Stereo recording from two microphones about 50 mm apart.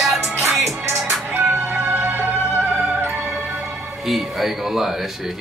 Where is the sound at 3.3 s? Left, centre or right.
Centre.